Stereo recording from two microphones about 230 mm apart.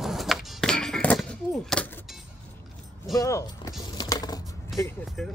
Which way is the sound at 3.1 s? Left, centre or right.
Centre.